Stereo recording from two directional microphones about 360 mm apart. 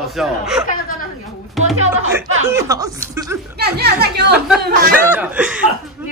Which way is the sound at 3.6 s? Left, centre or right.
Right.